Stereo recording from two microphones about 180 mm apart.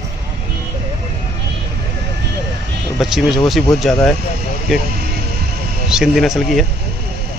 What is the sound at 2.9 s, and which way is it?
Speech, centre (ahead or behind).